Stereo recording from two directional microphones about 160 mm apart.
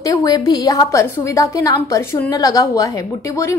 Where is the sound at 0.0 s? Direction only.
20° left (ahead or behind).